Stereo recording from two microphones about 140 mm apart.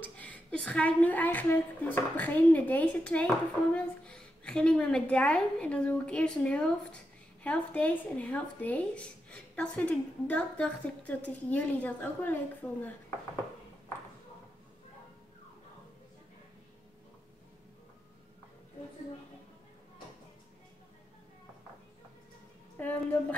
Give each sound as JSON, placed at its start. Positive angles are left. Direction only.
{"t": 0.0, "sound": "speech", "side_deg": 10}
{"t": 12.6, "sound": "speech", "side_deg": 0}
{"t": 22.8, "sound": "speech", "side_deg": 10}